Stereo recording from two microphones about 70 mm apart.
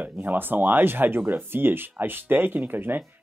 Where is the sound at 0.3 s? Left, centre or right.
Right.